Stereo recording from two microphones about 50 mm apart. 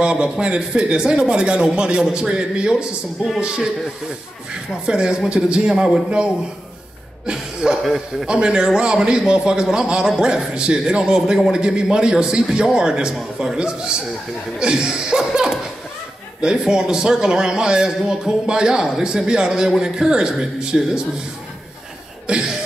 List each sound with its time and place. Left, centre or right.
0.0 s a man's voice: centre
4.8 s a man's voice: centre
6.0 s speech: right
7.2 s cough: centre
7.8 s a man's voice: centre
8.3 s a man's voice: centre
22.3 s a man's voice: centre